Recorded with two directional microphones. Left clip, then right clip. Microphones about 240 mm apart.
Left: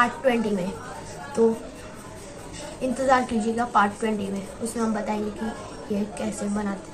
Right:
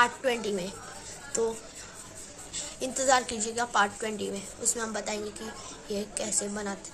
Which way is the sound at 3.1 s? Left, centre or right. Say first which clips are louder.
Left 4 dB; right.